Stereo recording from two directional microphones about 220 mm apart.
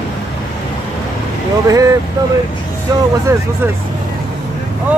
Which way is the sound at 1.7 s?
15° right (ahead or behind).